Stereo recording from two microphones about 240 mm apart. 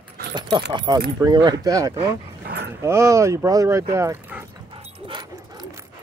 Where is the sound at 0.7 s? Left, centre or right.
Centre.